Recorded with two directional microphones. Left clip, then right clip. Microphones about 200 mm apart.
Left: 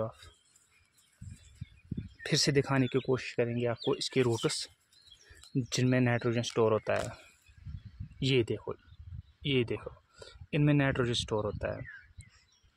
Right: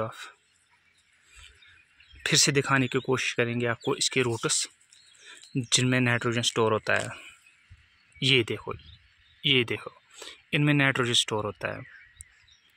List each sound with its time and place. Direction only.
2.2 s speech: centre (ahead or behind); by 3.9 s 15° right (ahead or behind)
3.9 s speech: 5° left (ahead or behind)
8.2 s speech: centre (ahead or behind)